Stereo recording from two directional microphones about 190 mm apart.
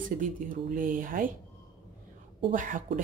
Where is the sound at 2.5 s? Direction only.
45° right (ahead or behind).